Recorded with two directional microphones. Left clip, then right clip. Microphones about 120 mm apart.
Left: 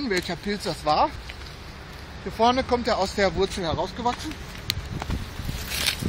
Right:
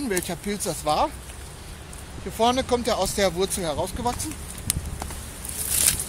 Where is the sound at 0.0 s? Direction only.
35° right (ahead or behind).